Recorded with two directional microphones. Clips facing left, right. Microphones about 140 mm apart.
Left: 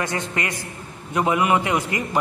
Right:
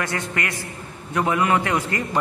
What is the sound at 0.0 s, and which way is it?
A man's voice, 20° left (ahead or behind).